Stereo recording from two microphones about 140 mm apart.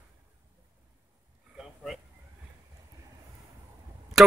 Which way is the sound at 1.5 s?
Centre (ahead or behind).